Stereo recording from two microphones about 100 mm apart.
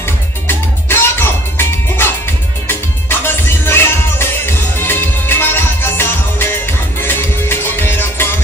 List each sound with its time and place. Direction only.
0.0 s music: 25° left (ahead or behind)